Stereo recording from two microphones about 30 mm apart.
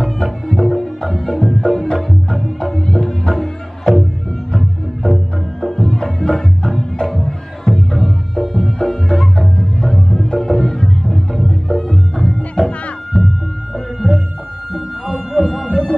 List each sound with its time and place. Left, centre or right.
0.2 s music: centre
2.6 s music: centre
4.6 s music: centre
7.7 s music: centre
14.0 s music: left
15.3 s music: centre
15.7 s music: centre